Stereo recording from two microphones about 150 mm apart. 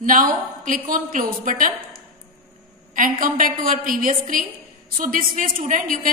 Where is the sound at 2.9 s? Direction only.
65° right (ahead or behind).